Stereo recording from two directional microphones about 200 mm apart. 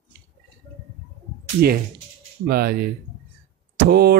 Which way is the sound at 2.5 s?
50° right (ahead or behind).